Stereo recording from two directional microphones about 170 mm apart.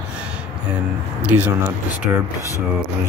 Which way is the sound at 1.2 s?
10° right (ahead or behind).